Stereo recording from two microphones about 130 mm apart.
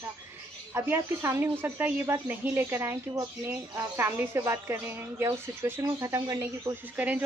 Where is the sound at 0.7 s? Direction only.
20° right (ahead or behind).